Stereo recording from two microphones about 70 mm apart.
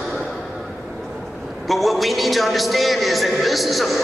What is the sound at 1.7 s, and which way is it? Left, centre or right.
A man's voice, centre.